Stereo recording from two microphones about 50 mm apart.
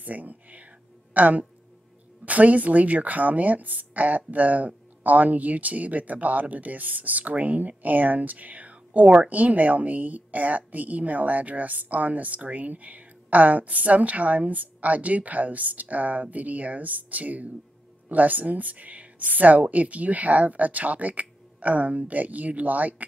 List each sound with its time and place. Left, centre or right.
0.0 s whispering: right
1.1 s speech: right